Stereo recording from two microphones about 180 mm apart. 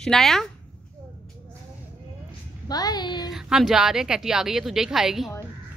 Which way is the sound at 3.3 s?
5° right (ahead or behind).